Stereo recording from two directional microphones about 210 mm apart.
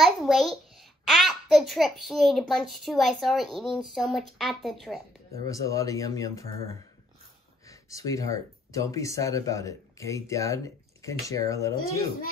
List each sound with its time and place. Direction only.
0.0 s a sound: centre (ahead or behind)
1.0 s a child's voice: centre (ahead or behind)
5.4 s speech: 15° left (ahead or behind)
7.9 s speech: 15° left (ahead or behind)